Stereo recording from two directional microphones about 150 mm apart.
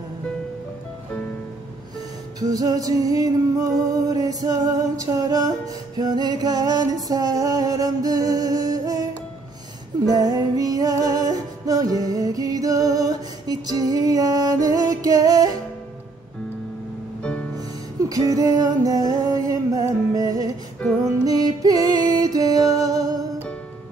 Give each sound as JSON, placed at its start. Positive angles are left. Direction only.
{"t": 2.0, "sound": "music", "side_deg": -25}
{"t": 10.0, "sound": "music", "side_deg": -25}
{"t": 17.2, "sound": "music", "side_deg": 5}
{"t": 17.6, "sound": "music", "side_deg": -25}